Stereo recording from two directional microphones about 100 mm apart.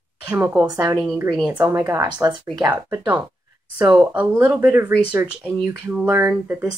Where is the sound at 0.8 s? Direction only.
35° right (ahead or behind).